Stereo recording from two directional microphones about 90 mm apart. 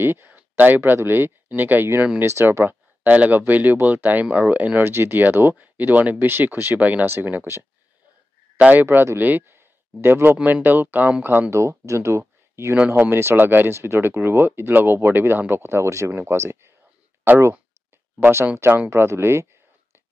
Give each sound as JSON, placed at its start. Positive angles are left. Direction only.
{"t": 0.0, "sound": "speech", "side_deg": -25}
{"t": 12.7, "sound": "speech", "side_deg": -15}
{"t": 13.0, "sound": "speech", "side_deg": -25}
{"t": 18.6, "sound": "speech", "side_deg": -25}